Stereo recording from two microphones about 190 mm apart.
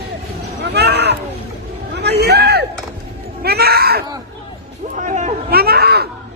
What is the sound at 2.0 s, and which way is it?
Hubbub, 60° right (ahead or behind).